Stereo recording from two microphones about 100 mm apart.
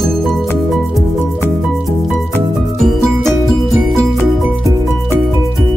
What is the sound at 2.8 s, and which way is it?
Music, 5° left (ahead or behind).